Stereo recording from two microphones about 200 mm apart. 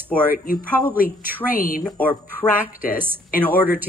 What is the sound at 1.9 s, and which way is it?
Speech, 10° left (ahead or behind).